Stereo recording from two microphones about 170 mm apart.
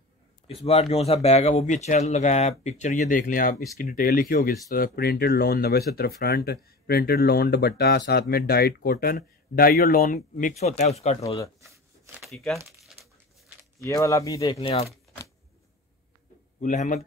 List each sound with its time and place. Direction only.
0.7 s speech: 35° left (ahead or behind)
11.6 s shuffling cards: 15° right (ahead or behind)
12.2 s speech: centre (ahead or behind)
13.8 s speech: 20° left (ahead or behind)
14.6 s speech: 35° left (ahead or behind)
16.6 s speech: 45° left (ahead or behind)